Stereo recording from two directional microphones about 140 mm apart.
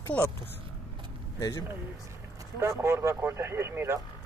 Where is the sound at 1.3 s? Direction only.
25° left (ahead or behind).